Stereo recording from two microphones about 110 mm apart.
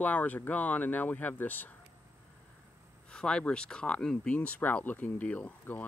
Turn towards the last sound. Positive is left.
turn(degrees=15)  # may be behind; listen again after turning